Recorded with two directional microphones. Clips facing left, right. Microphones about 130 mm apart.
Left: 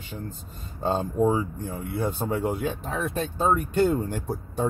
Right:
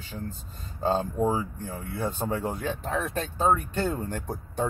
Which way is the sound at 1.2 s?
15° left (ahead or behind).